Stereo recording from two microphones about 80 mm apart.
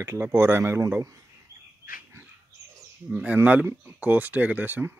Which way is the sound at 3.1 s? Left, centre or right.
Centre.